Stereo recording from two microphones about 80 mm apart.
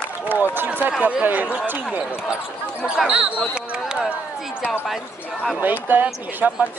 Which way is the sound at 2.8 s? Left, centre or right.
Centre.